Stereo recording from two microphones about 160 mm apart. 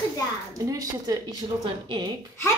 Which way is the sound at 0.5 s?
20° right (ahead or behind).